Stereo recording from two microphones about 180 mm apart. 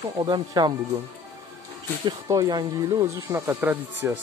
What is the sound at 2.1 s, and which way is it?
Speech, 20° right (ahead or behind).